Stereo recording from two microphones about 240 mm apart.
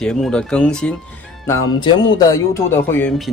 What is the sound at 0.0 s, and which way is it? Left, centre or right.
Speech, centre.